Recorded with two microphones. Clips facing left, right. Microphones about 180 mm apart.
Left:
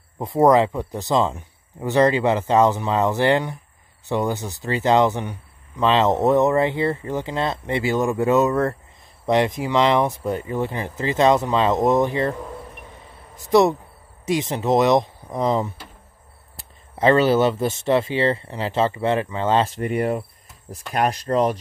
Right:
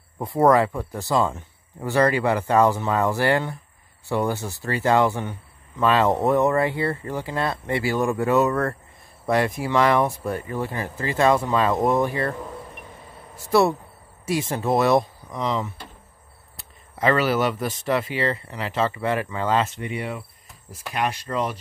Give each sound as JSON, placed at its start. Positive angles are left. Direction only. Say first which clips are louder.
{"t": 0.2, "sound": "speech", "louder": "left 2 dB", "side_deg": 20}
{"t": 13.4, "sound": "speech", "louder": "left 3 dB", "side_deg": 20}
{"t": 15.2, "sound": "speech", "louder": "left 5 dB", "side_deg": 30}
{"t": 19.8, "sound": "speech", "louder": "left 8 dB", "side_deg": 45}